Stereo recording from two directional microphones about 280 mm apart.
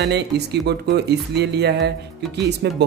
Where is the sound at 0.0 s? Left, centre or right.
Right.